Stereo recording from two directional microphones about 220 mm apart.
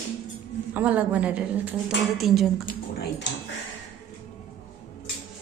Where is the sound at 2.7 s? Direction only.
45° left (ahead or behind).